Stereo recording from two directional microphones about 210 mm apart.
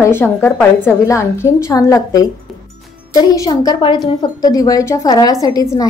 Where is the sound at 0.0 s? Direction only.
10° left (ahead or behind).